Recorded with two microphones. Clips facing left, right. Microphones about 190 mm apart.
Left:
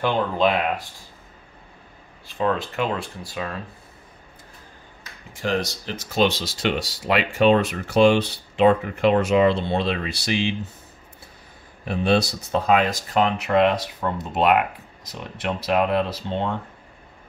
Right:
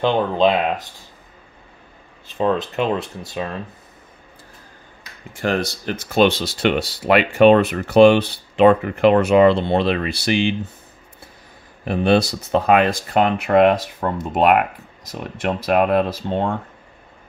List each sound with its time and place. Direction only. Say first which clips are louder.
0.0 s speech: right 4 dB; 20° right (ahead or behind)
2.2 s speech: right 4 dB; 20° right (ahead or behind)
5.4 s speech: right 3 dB; 55° right (ahead or behind)
11.8 s speech: right 4 dB; 60° right (ahead or behind)